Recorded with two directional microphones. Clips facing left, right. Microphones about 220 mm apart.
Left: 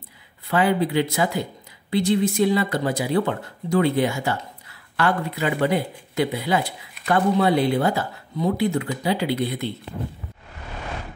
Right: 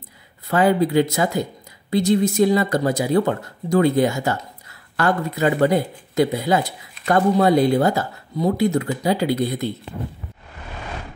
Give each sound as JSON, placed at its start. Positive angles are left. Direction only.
{"t": 0.5, "sound": "speech", "side_deg": -45}